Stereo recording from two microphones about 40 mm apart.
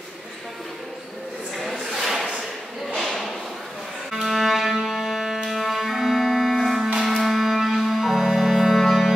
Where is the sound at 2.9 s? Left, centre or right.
Centre.